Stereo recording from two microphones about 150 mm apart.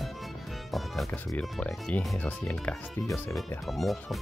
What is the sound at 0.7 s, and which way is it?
Speech, centre (ahead or behind).